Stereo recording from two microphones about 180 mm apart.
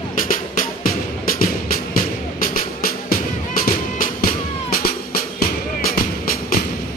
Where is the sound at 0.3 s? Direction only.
50° left (ahead or behind).